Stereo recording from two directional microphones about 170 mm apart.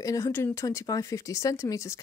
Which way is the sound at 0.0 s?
20° left (ahead or behind).